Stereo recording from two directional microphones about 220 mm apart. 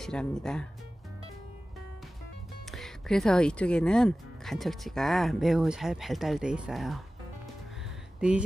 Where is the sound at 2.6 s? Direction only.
Centre (ahead or behind).